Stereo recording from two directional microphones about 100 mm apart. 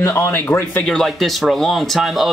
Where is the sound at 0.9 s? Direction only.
Centre (ahead or behind).